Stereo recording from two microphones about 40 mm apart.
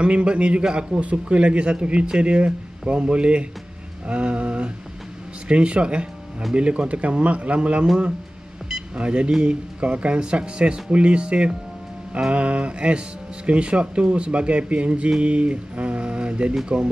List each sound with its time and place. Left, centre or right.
0.0 s speech: right
8.9 s speech: right